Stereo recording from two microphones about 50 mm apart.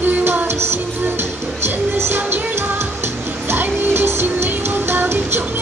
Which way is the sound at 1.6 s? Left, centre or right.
Right.